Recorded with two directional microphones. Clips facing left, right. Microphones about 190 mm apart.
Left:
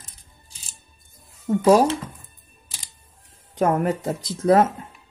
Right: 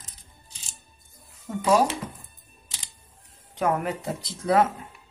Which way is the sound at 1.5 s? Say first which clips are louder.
Left 10 dB; 45° left (ahead or behind).